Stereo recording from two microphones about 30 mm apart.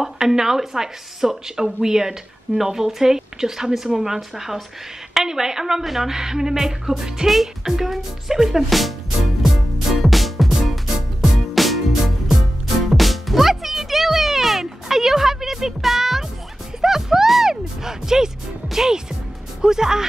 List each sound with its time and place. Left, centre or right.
0.0 s speech: centre
6.1 s music: centre
7.6 s speech: centre
9.4 s music: centre
12.9 s music: centre
19.6 s speech: centre